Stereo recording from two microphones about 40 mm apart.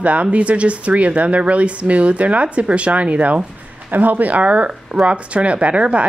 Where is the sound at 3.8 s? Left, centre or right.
Right.